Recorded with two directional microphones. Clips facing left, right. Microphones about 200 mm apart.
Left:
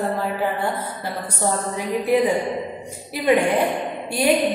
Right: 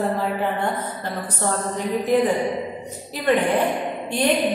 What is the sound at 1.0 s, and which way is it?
A woman's voice, 10° left (ahead or behind).